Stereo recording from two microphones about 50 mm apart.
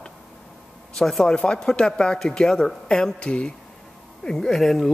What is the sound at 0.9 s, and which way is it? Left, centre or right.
Speech, centre.